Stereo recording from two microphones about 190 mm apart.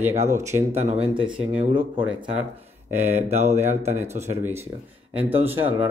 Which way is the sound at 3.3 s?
35° right (ahead or behind).